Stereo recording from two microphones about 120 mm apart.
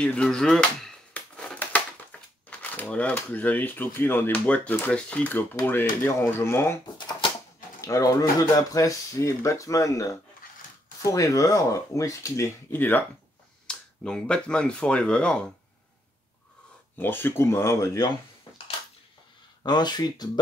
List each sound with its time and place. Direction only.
0.0 s a sound: 10° left (ahead or behind)
2.1 s crushing: 15° left (ahead or behind)
2.5 s speech: 15° left (ahead or behind)
7.0 s typewriter: 40° left (ahead or behind)
7.8 s speech: 25° left (ahead or behind)
13.7 s speech: 5° left (ahead or behind)
16.9 s speech: 15° left (ahead or behind)
19.6 s speech: 35° left (ahead or behind)